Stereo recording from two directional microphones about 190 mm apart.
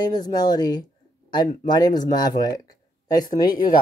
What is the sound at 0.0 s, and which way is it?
Speech, 20° left (ahead or behind).